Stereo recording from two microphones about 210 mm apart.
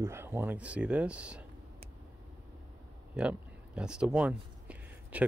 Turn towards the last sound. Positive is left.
turn(degrees=-5)  # may be behind; listen again after turning